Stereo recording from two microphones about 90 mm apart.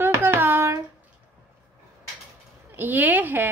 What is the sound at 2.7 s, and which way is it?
Speech, 20° right (ahead or behind).